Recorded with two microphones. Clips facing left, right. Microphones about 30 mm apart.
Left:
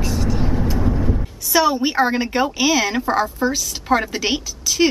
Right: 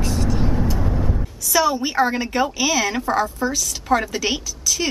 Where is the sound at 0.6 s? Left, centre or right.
Centre.